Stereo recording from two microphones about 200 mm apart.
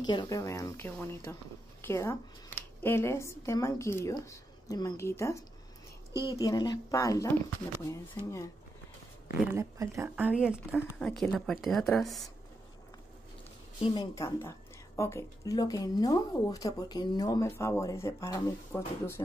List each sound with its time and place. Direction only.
0.0 s speech: 20° left (ahead or behind)
9.4 s speech: 10° right (ahead or behind)
13.8 s speech: 20° left (ahead or behind)